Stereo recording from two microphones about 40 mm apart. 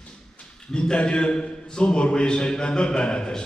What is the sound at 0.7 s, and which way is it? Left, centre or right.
A man's voice, left.